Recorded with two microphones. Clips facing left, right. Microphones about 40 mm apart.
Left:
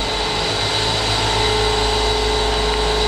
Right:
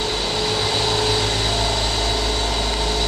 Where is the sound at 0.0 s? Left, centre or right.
Centre.